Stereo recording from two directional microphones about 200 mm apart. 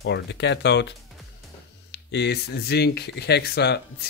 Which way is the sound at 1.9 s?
60° left (ahead or behind).